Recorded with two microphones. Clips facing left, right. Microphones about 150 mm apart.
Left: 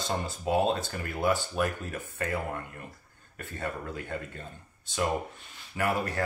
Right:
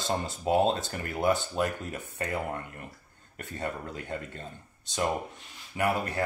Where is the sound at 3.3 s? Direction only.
20° right (ahead or behind).